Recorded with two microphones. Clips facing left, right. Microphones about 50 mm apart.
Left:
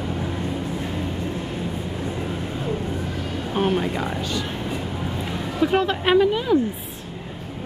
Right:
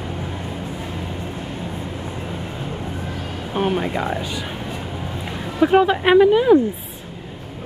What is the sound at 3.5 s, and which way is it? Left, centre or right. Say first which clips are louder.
Speech: right 1 dB; centre.